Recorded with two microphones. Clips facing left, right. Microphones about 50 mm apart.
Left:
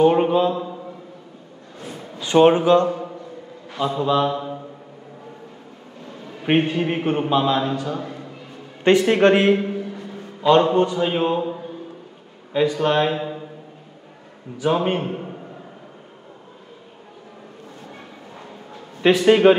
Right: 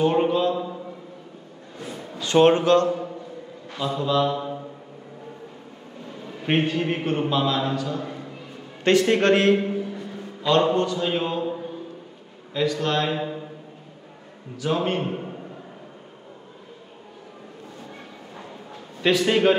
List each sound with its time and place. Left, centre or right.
0.0 s a man's voice: centre
2.3 s a man's voice: centre
6.0 s a sound: centre
6.4 s a man's voice: centre
8.0 s a sound: centre
8.8 s a man's voice: centre
12.5 s a man's voice: centre
13.1 s a sound: centre
14.6 s a man's voice: centre
15.0 s a man's voice: centre
19.0 s a man's voice: centre